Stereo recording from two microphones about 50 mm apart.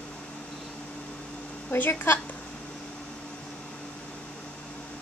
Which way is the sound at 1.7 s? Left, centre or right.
Left.